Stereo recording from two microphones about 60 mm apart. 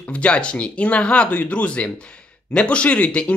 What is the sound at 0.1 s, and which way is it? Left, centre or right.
Speech, left.